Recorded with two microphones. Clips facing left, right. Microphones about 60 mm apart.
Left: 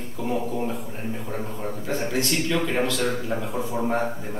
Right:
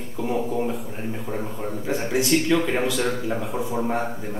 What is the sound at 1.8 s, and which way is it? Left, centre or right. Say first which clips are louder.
A man's voice: right 3 dB; centre.